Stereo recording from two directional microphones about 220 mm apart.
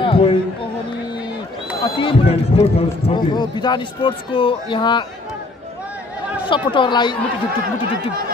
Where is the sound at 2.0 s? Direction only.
25° left (ahead or behind).